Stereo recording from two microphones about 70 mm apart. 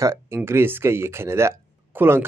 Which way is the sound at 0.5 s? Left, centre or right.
Right.